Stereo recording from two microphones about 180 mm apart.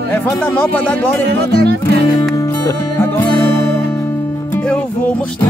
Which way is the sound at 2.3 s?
20° left (ahead or behind).